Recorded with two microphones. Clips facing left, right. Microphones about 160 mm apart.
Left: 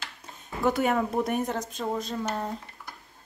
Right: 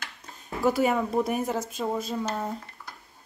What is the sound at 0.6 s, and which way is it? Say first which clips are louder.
Speech: right 1 dB; 5° right (ahead or behind).